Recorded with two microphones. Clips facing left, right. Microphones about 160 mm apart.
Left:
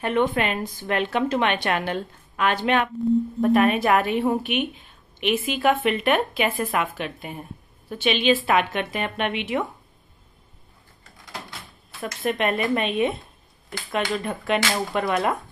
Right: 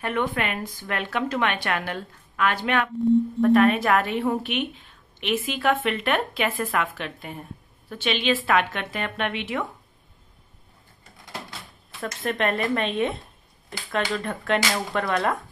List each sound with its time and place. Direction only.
0.0 s a woman's voice: 25° left (ahead or behind)
12.0 s speech: 10° left (ahead or behind)
14.1 s speech: 15° left (ahead or behind)